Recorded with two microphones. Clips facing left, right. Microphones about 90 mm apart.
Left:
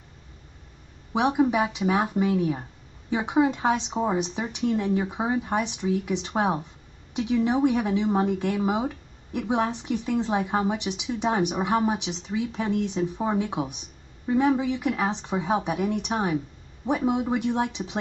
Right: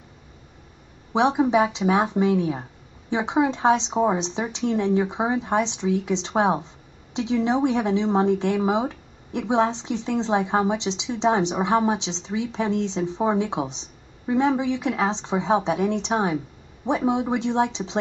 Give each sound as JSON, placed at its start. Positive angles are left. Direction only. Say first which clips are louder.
{"t": 1.1, "sound": "speech", "louder": "right 3 dB", "side_deg": -20}